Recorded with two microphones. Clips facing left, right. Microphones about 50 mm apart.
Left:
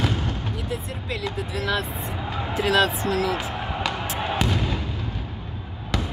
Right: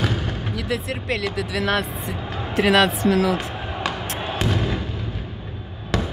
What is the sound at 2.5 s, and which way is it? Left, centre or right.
Speech, right.